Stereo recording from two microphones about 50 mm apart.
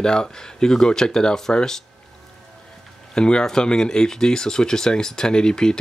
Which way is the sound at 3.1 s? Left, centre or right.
Centre.